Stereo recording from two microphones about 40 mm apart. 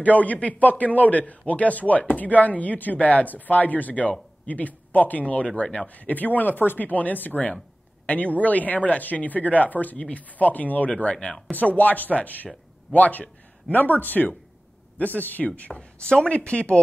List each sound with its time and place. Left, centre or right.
0.0 s speech: left
5.9 s speech: left
15.7 s speech: left